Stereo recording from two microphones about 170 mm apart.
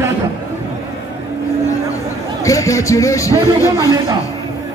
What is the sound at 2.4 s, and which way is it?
Speech, 20° left (ahead or behind).